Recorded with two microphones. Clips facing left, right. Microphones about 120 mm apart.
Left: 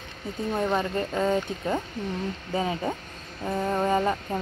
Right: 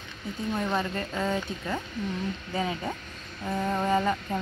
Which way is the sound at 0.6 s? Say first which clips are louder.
Left 4 dB; 25° left (ahead or behind).